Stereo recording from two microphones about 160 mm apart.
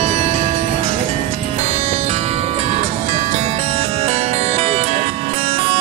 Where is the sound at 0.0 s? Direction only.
40° right (ahead or behind).